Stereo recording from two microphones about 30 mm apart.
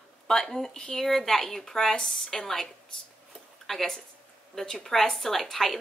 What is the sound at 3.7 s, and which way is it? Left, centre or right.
Speech, centre.